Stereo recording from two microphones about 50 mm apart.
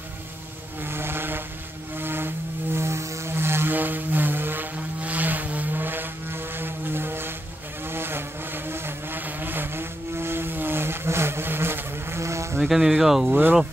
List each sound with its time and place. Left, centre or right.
0.8 s vehicle: right
3.3 s vehicle: right
3.7 s vehicle: right
5.0 s vehicle: right
12.2 s insect: right
12.6 s speech: centre